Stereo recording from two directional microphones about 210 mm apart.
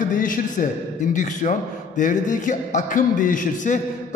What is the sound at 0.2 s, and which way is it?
A man's voice, 40° left (ahead or behind).